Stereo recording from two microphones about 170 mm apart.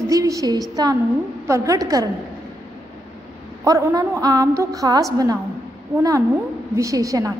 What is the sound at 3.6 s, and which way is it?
A woman's voice, 20° right (ahead or behind).